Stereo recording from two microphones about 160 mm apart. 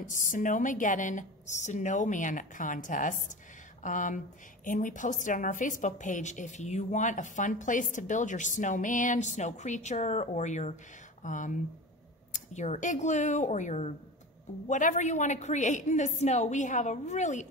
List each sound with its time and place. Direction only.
0.0 s a woman's voice: 55° left (ahead or behind)